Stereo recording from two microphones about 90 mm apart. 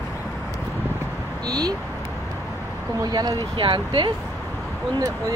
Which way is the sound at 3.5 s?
65° right (ahead or behind).